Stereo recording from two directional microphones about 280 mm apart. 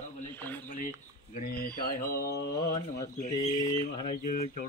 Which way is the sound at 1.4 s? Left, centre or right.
Left.